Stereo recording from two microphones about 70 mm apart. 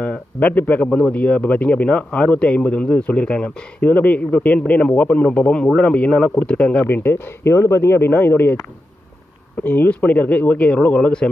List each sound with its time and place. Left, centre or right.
0.0 s a man's voice: left
0.8 s speech: centre
1.1 s a man's voice: left
6.9 s speech: left
9.6 s a man's voice: left